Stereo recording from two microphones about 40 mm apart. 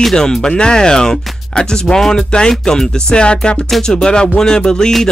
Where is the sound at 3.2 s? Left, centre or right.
Left.